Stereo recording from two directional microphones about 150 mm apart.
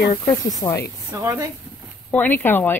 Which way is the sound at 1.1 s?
20° right (ahead or behind).